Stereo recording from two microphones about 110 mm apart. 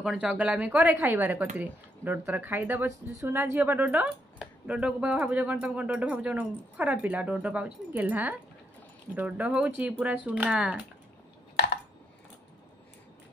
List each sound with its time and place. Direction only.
0.0 s speech: 10° right (ahead or behind)